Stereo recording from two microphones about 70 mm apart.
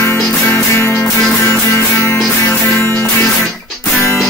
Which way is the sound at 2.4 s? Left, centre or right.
Left.